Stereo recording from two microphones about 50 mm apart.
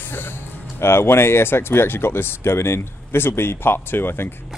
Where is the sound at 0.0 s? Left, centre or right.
Left.